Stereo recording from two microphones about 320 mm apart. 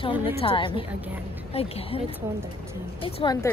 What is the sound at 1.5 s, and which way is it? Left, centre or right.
Speech, centre.